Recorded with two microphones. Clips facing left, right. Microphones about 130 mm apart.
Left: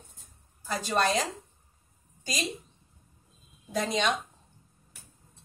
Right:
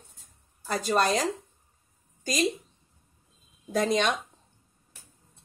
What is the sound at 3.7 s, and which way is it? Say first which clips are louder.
Speech: right 3 dB; 50° right (ahead or behind).